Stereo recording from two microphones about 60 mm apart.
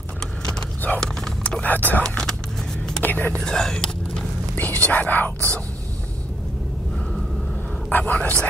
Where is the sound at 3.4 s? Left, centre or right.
Centre.